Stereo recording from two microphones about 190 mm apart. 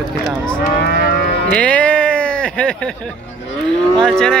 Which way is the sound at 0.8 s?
55° left (ahead or behind).